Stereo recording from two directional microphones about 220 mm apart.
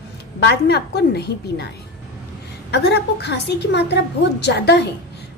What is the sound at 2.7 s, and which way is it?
A woman's voice, 50° left (ahead or behind).